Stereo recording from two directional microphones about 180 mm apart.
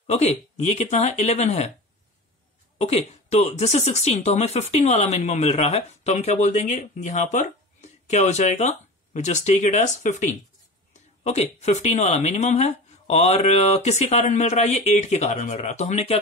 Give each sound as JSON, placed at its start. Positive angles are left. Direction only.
{"t": 0.0, "sound": "speech", "side_deg": 40}
{"t": 2.8, "sound": "speech", "side_deg": 35}